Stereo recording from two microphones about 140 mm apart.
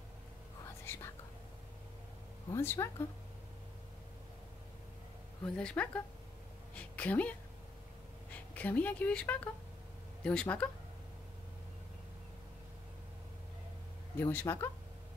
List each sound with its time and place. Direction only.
0.8 s whispering: 15° left (ahead or behind)
2.5 s speech: 15° left (ahead or behind)
5.4 s speech: 10° left (ahead or behind)
6.7 s a sound: 10° left (ahead or behind)
8.5 s speech: 10° left (ahead or behind)
14.1 s speech: 15° left (ahead or behind)